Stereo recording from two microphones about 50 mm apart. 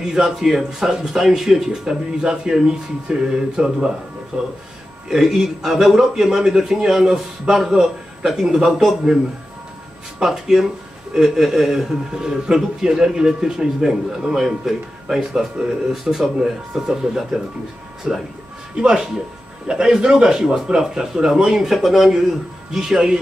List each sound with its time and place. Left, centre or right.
0.0 s speech: centre
10.2 s speech: centre